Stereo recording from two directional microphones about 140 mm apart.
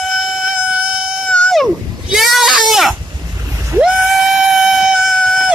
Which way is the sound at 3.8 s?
Centre (ahead or behind).